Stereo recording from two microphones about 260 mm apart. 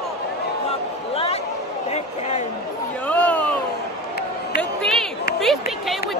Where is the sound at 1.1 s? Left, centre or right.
Left.